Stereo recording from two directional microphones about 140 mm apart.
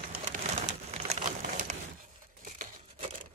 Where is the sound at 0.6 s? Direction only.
55° right (ahead or behind).